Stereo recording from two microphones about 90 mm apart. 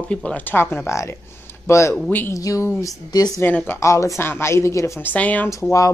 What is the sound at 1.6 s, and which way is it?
Speech, 35° left (ahead or behind).